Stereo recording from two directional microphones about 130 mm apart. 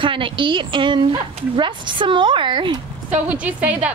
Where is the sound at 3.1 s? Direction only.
10° right (ahead or behind).